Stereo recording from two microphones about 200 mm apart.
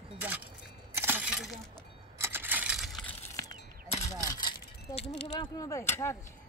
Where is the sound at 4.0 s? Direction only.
20° left (ahead or behind).